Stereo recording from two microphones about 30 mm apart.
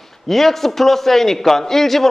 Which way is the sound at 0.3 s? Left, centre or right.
Centre.